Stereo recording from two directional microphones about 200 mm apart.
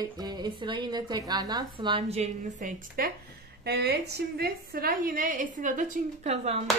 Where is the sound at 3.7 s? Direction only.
55° right (ahead or behind); by 6.6 s 30° right (ahead or behind).